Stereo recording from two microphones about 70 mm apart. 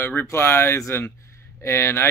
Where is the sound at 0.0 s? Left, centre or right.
Left.